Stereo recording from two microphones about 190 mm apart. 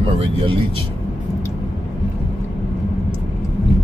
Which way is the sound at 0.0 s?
25° right (ahead or behind).